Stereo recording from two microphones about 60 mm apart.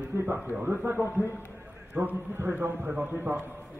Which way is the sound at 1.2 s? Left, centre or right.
Left.